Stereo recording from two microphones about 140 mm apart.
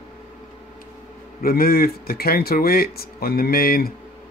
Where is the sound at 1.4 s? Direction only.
90° left.